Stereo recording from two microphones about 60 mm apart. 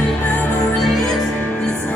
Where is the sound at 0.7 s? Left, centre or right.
Centre.